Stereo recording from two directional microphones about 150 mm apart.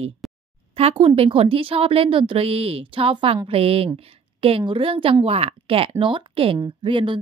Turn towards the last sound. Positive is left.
turn(degrees=-35)  # may be behind; listen again after turning